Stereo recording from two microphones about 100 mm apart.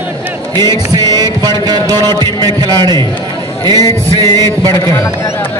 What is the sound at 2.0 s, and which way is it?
A man's voice, 45° right (ahead or behind).